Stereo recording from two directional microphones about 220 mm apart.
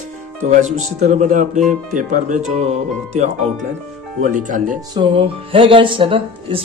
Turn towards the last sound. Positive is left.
turn(degrees=-25)  # may be behind; listen again after turning